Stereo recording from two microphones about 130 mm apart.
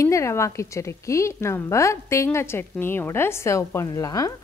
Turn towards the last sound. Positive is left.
turn(degrees=30)  # may be behind; listen again after turning